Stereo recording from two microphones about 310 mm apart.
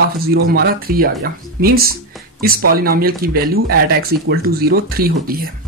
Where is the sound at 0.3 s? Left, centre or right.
Right.